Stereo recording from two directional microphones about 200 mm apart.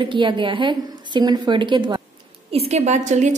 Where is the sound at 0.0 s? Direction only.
25° right (ahead or behind).